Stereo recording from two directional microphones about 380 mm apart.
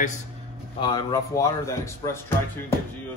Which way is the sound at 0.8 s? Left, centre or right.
Centre.